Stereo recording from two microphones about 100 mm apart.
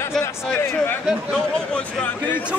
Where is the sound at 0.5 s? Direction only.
20° left (ahead or behind).